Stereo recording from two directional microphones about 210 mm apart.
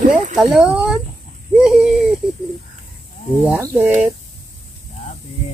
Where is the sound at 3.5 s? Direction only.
10° right (ahead or behind).